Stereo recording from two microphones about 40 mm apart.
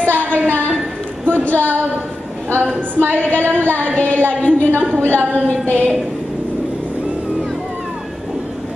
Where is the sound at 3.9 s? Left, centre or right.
Left.